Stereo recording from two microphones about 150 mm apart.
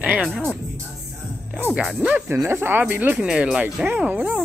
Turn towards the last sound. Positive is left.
turn(degrees=-10)  # may be behind; listen again after turning